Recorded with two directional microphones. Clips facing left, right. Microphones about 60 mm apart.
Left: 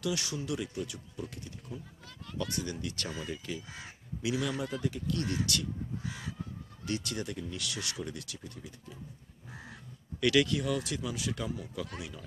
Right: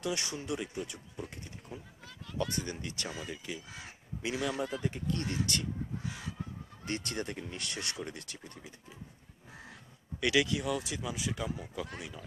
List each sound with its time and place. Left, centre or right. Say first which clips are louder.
0.0 s speech: left 1 dB; right; by 3.6 s centre
4.2 s a man's voice: left 2 dB; right
4.5 s speech: even; centre
4.8 s speech: left 1 dB; right
6.8 s speech: left 1 dB; right
8.5 s speech: left 3 dB; right
10.2 s speech: left 2 dB; centre